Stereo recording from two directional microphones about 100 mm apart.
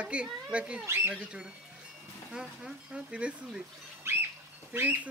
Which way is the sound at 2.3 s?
10° right (ahead or behind).